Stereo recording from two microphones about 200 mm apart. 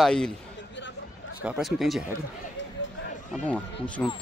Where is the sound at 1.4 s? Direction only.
5° right (ahead or behind).